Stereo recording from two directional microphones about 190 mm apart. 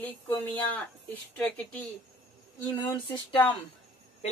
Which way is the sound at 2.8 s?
20° left (ahead or behind).